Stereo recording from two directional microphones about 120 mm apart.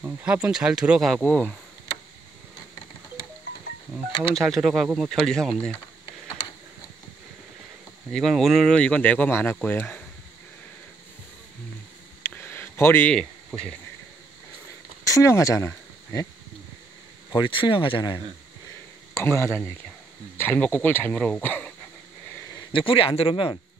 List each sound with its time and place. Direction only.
0.0 s speech: 10° right (ahead or behind)
1.2 s speech: 10° left (ahead or behind)
4.4 s speech: centre (ahead or behind)
8.1 s speech: centre (ahead or behind)
12.2 s a sound: 20° left (ahead or behind)
13.1 s speech: 5° left (ahead or behind)
15.0 s speech: 25° left (ahead or behind)
17.3 s speech: 45° left (ahead or behind)
19.1 s speech: 25° left (ahead or behind)
22.7 s speech: 45° left (ahead or behind)